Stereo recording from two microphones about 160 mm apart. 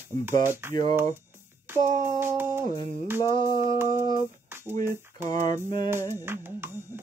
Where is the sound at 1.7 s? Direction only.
15° right (ahead or behind).